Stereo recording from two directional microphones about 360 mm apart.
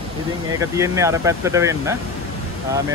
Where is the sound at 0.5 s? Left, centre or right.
Centre.